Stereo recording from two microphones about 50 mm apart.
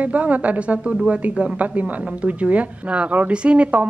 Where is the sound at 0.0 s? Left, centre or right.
Right.